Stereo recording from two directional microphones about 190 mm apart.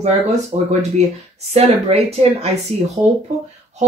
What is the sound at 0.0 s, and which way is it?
Speech, 35° right (ahead or behind).